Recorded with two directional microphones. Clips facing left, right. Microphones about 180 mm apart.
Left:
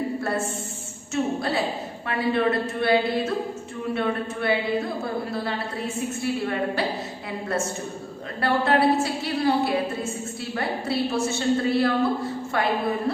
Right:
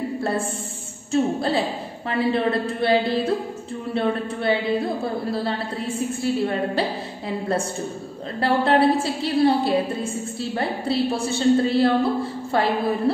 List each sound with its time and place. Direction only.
0.2 s a woman's voice: 30° right (ahead or behind)